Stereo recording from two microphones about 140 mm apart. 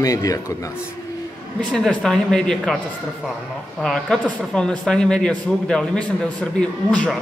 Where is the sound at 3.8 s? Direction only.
5° left (ahead or behind).